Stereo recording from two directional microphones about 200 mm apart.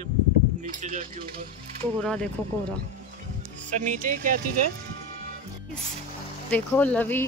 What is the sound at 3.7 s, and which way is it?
Speech, 40° right (ahead or behind).